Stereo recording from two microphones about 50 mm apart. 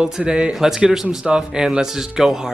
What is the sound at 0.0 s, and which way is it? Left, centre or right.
A man's voice, centre.